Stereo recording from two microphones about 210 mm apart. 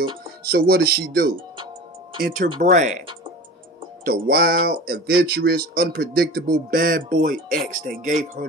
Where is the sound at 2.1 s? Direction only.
45° right (ahead or behind).